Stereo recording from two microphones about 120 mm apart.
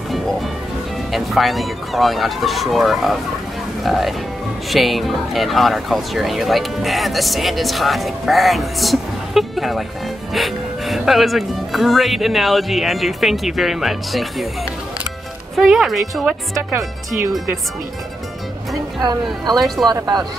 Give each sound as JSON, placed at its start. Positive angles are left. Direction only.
{"t": 1.1, "sound": "speech", "side_deg": 0}
{"t": 15.5, "sound": "speech", "side_deg": 0}
{"t": 18.9, "sound": "speech", "side_deg": -35}